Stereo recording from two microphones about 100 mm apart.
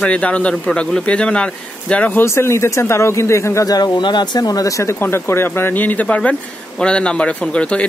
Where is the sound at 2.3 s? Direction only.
25° left (ahead or behind).